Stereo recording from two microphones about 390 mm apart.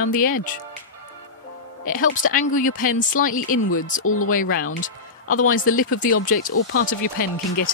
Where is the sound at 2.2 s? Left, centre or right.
Centre.